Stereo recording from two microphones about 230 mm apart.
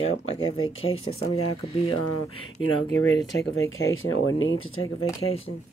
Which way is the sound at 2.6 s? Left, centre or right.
Left.